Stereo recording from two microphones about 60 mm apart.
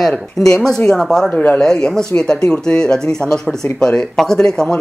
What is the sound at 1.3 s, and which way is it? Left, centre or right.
Speech, left.